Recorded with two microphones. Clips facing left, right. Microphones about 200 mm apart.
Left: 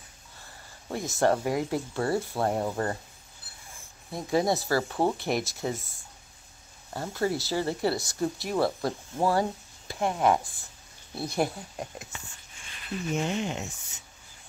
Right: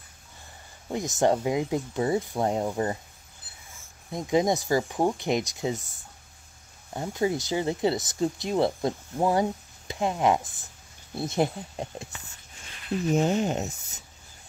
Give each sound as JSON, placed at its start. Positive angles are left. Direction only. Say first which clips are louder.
{"t": 0.8, "sound": "speech", "louder": "right 1 dB", "side_deg": -15}
{"t": 4.1, "sound": "speech", "louder": "right 2 dB", "side_deg": -20}
{"t": 6.9, "sound": "speech", "louder": "right 2 dB", "side_deg": -20}
{"t": 13.1, "sound": "speech", "louder": "right 6 dB", "side_deg": -40}